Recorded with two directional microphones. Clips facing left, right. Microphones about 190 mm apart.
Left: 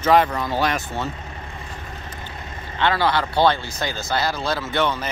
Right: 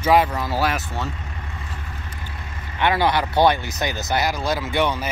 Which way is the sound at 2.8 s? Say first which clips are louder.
Right 1 dB; 20° right (ahead or behind).